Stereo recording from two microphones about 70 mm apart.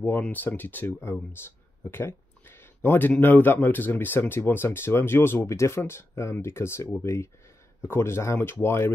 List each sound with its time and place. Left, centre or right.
0.2 s speech: left